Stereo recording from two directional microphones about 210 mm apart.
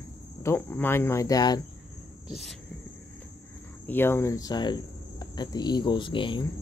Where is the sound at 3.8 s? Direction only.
10° left (ahead or behind).